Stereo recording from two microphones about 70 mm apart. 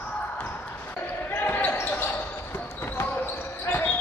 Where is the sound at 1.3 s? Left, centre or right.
Left.